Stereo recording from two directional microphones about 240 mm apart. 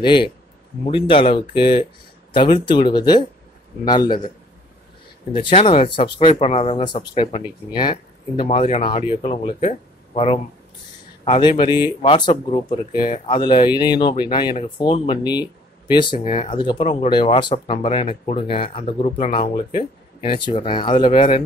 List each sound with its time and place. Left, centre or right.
0.0 s a man's voice: centre
5.3 s speech: left